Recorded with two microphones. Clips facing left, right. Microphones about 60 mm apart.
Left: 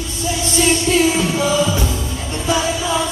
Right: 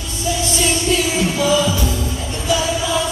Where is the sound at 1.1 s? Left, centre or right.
Left.